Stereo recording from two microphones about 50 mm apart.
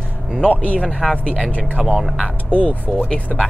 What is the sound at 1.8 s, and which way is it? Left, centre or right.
Speech, centre.